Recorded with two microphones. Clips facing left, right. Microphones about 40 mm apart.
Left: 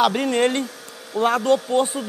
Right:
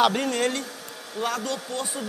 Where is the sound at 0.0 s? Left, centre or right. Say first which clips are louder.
Left 2 dB; centre.